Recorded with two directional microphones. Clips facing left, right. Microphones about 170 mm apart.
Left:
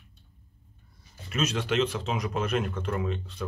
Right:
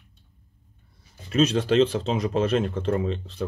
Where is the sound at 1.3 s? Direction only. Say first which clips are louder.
Right 8 dB; 30° right (ahead or behind).